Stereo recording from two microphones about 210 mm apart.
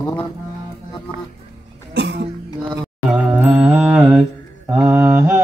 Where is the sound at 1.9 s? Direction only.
55° right (ahead or behind).